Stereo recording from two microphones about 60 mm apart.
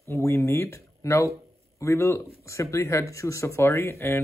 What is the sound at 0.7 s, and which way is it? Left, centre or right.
Speech, left.